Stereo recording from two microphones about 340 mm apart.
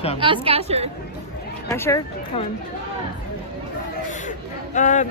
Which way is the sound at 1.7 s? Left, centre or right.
Centre.